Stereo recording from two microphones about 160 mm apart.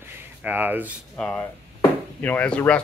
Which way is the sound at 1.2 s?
5° left (ahead or behind).